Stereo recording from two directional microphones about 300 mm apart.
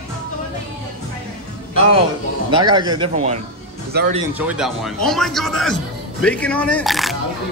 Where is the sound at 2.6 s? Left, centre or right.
Centre.